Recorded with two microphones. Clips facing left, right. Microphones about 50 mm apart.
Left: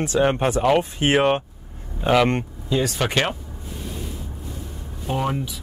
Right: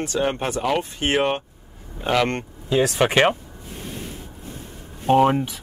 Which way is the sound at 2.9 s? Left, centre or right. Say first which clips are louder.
Right 5 dB; right.